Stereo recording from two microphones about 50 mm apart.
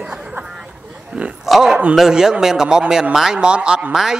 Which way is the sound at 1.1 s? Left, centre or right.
Right.